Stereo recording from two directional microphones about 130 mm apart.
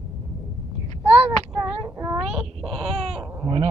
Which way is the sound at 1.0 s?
50° right (ahead or behind).